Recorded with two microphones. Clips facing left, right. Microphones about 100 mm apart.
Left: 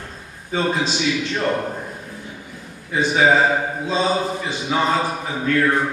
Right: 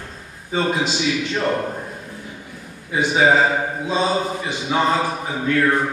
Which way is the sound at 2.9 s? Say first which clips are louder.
Even; 15° right (ahead or behind).